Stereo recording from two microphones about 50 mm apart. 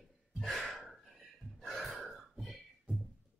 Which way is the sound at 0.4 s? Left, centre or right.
Centre.